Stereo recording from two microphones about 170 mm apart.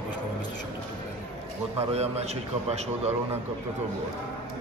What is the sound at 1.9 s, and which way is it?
A man's voice, 40° right (ahead or behind).